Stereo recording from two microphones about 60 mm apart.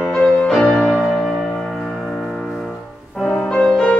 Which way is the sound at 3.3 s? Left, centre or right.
Centre.